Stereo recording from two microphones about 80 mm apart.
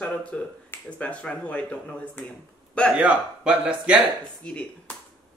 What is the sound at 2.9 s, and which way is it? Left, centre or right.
Speech, centre.